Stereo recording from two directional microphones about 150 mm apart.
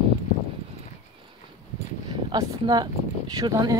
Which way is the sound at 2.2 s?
30° right (ahead or behind).